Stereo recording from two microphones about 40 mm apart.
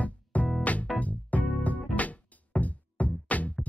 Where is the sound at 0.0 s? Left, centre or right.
Left.